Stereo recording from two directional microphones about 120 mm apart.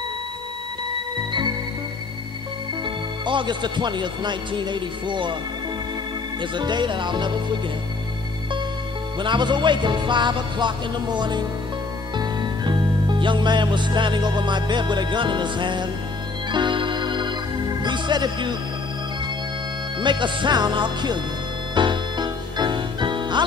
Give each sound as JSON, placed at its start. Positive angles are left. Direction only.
{"t": 2.8, "sound": "speech", "side_deg": -40}
{"t": 6.4, "sound": "music", "side_deg": -40}
{"t": 9.2, "sound": "music", "side_deg": -40}
{"t": 20.0, "sound": "music", "side_deg": -40}